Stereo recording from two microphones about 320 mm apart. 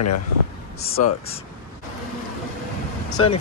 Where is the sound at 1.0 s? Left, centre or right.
Left.